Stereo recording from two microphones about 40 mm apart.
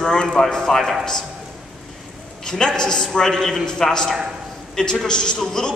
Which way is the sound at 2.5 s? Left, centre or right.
Centre.